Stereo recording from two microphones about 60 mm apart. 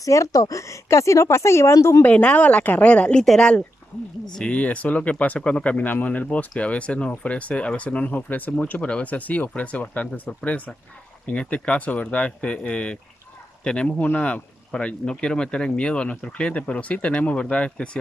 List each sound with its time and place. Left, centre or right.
0.0 s a woman's voice: left
2.0 s speech: left